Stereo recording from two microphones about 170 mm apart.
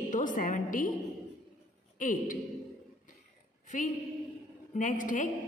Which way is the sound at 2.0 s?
50° left (ahead or behind).